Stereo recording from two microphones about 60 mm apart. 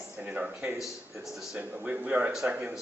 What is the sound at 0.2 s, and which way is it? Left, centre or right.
Speech, right.